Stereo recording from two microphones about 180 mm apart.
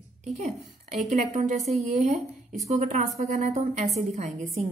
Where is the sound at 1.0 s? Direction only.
40° right (ahead or behind).